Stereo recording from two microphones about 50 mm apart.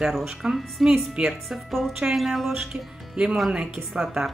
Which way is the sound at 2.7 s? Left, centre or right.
Centre.